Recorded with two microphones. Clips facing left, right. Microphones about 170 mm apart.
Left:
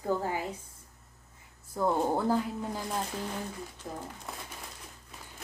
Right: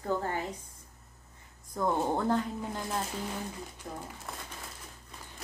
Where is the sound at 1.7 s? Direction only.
5° left (ahead or behind).